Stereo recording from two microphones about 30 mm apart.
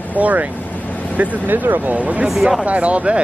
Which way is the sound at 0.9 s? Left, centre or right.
Left.